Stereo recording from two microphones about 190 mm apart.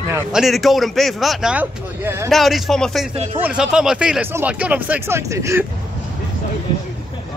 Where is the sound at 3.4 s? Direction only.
5° right (ahead or behind).